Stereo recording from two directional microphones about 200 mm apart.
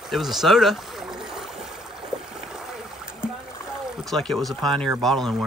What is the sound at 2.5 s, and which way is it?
Boat, 5° right (ahead or behind).